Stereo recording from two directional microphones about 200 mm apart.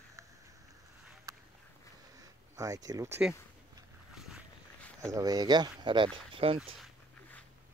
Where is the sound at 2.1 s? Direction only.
15° right (ahead or behind).